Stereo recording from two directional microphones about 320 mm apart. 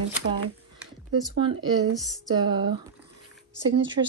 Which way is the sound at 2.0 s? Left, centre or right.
Centre.